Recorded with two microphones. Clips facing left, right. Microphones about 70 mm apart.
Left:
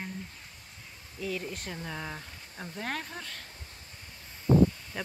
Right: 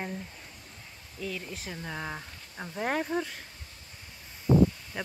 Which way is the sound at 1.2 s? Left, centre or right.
Centre.